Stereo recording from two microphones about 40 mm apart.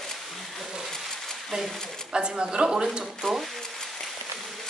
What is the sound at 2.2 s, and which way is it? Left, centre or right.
Speech, centre.